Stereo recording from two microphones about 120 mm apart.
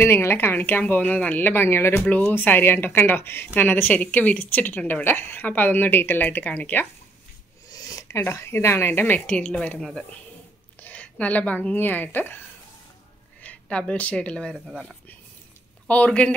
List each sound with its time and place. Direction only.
0.0 s speech: 20° left (ahead or behind)
7.7 s a woman's voice: 25° left (ahead or behind); by 14.6 s 5° left (ahead or behind)
14.7 s speech: 5° right (ahead or behind)
15.9 s speech: 10° left (ahead or behind)